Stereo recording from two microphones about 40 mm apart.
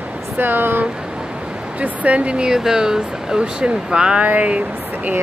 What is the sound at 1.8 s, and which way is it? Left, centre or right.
Speech, right.